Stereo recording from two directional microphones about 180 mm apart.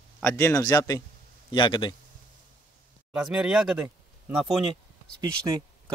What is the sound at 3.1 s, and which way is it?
Speech, 5° right (ahead or behind).